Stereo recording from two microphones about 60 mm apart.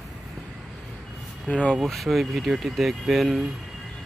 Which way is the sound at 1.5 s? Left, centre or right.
Centre.